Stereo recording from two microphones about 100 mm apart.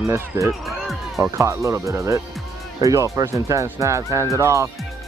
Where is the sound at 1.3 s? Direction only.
30° right (ahead or behind).